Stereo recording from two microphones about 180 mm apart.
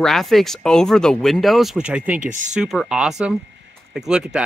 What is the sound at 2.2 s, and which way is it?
Speech, 45° right (ahead or behind).